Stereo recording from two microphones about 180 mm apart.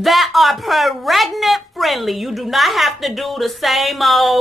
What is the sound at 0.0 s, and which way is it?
Speech, centre (ahead or behind).